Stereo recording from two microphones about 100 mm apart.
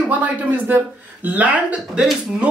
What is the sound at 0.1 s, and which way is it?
Speech, 15° right (ahead or behind).